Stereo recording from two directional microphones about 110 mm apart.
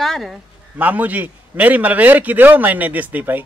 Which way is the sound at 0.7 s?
15° right (ahead or behind).